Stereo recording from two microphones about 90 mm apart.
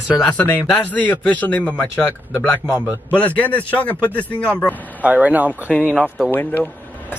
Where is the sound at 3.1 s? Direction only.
15° left (ahead or behind).